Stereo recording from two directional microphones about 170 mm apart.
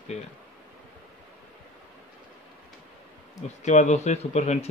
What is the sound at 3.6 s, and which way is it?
Speech, 45° left (ahead or behind).